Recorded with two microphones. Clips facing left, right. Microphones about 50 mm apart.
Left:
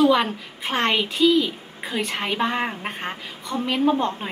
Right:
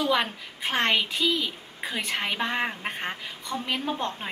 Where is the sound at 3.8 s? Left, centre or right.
Centre.